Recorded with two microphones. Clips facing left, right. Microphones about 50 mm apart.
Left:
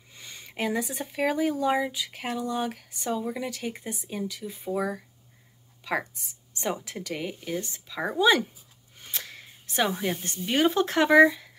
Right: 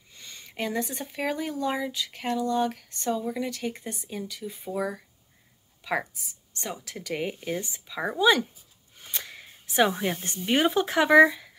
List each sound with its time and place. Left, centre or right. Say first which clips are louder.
0.1 s speech: left 2 dB; centre
7.2 s speech: right 3 dB; centre
8.9 s a sound: even; centre
10.2 s speech: even; centre